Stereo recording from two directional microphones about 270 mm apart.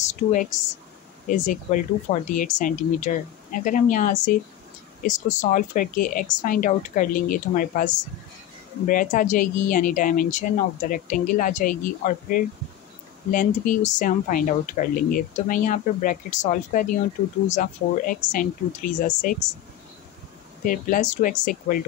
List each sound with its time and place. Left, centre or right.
0.0 s speech: left
20.6 s speech: left